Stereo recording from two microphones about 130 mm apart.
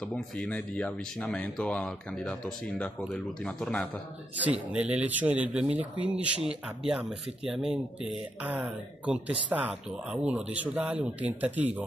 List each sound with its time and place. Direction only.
0.0 s speech: 5° left (ahead or behind)
4.4 s speech: 10° right (ahead or behind)